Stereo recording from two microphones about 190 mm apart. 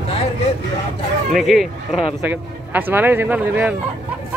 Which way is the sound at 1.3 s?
Centre (ahead or behind).